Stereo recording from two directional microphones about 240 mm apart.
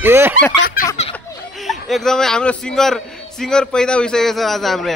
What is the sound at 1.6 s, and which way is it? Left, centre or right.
A man's voice, centre.